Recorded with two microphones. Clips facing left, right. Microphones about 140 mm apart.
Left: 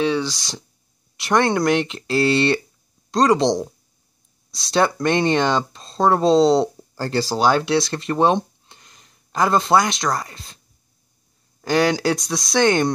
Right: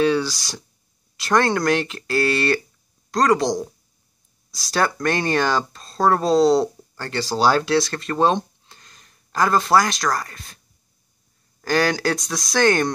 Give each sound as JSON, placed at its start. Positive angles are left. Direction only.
{"t": 0.0, "sound": "speech", "side_deg": 20}
{"t": 7.3, "sound": "speech", "side_deg": 15}
{"t": 11.6, "sound": "speech", "side_deg": 20}
{"t": 12.1, "sound": "speech", "side_deg": 0}
{"t": 12.5, "sound": "speech", "side_deg": 20}